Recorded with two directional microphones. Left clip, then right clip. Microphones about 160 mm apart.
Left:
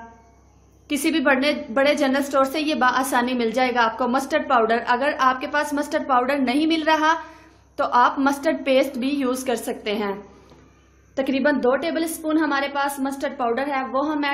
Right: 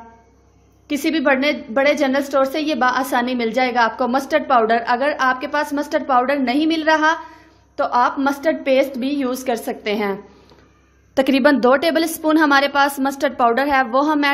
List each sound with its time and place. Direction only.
0.8 s a woman's voice: 20° right (ahead or behind)
11.1 s a woman's voice: 45° right (ahead or behind)